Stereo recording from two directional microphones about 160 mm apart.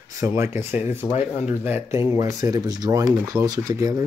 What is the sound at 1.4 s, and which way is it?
Speech, 15° right (ahead or behind).